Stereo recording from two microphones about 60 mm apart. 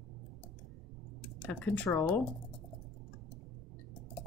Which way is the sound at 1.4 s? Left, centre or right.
Left.